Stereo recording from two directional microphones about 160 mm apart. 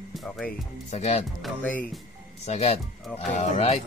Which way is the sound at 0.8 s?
45° left (ahead or behind).